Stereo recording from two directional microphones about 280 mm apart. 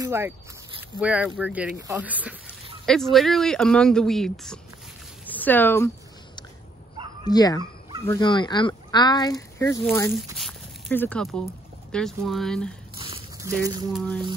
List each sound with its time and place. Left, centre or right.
0.0 s speech: centre
7.2 s speech: centre
13.0 s a sound: centre
13.9 s speech: centre